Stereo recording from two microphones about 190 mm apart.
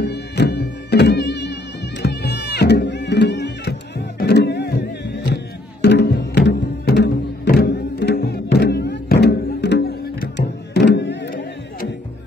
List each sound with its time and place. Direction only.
0.0 s music: 60° left (ahead or behind)